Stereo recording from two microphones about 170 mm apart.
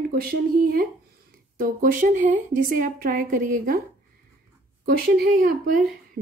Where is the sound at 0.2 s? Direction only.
60° right (ahead or behind).